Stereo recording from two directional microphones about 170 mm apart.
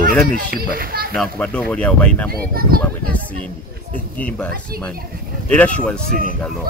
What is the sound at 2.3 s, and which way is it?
Speech, 60° right (ahead or behind).